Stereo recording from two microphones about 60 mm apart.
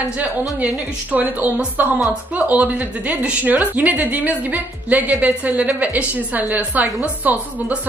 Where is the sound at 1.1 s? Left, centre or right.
Right.